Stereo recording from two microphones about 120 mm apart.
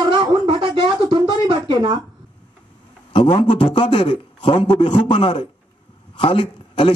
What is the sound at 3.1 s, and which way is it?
A man's voice, 45° left (ahead or behind).